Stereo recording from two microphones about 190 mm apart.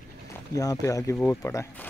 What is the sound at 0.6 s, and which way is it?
Speech, 15° left (ahead or behind).